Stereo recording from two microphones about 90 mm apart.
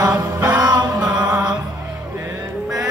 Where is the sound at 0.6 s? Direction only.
50° right (ahead or behind).